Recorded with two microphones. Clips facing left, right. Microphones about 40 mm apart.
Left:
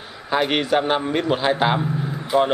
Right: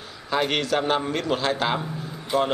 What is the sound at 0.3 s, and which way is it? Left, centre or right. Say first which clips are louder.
A man's voice: left 4 dB; centre.